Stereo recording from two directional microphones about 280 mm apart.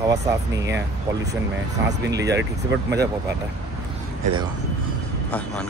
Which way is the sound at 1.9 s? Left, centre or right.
Right.